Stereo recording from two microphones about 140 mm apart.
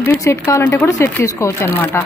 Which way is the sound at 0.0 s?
20° left (ahead or behind).